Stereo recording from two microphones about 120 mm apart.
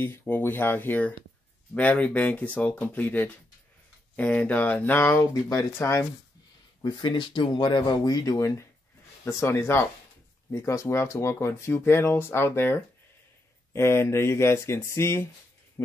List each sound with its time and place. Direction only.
0.2 s speech: 15° left (ahead or behind)
6.8 s speech: 35° left (ahead or behind); by 15.2 s 20° left (ahead or behind)